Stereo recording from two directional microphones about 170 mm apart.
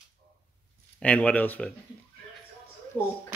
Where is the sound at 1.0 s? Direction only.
10° left (ahead or behind).